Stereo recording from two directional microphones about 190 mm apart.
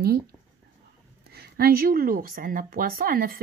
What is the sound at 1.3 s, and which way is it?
Speech, 55° right (ahead or behind).